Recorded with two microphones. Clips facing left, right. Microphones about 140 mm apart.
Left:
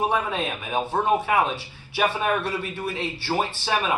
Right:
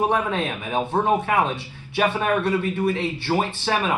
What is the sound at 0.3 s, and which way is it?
Speech, 10° left (ahead or behind).